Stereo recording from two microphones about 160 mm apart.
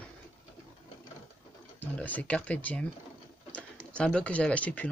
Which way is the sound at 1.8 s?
10° left (ahead or behind).